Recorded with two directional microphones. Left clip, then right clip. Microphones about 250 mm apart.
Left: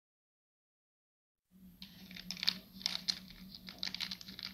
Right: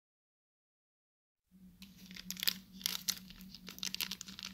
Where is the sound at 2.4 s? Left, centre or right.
Right.